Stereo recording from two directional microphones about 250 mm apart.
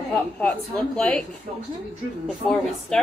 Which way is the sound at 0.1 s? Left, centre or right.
Centre.